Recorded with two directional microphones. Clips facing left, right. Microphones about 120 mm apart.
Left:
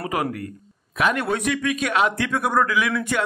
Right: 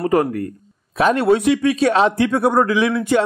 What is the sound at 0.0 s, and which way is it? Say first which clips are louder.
A man's voice: right 8 dB; 40° right (ahead or behind).